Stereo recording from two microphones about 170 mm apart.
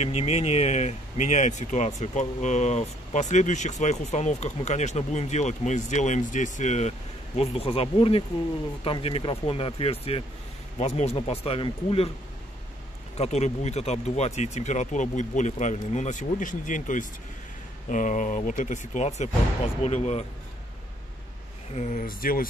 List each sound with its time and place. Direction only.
0.0 s speech: 40° left (ahead or behind)
13.2 s speech: 40° left (ahead or behind)
21.7 s speech: 50° left (ahead or behind)